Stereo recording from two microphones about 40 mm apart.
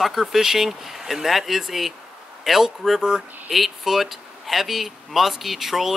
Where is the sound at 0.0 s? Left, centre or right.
Centre.